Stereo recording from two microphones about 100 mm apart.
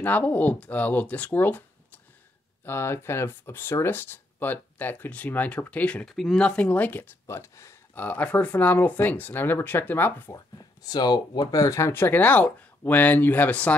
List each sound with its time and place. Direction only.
0.0 s speech: 15° left (ahead or behind)
6.0 s speech: centre (ahead or behind)
7.2 s speech: 30° left (ahead or behind)
7.9 s speech: 15° left (ahead or behind)
10.3 s speech: 40° left (ahead or behind)
11.5 s speech: 30° left (ahead or behind); by 13.7 s 15° left (ahead or behind)